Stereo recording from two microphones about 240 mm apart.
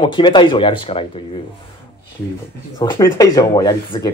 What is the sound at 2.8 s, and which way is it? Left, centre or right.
Speech, centre.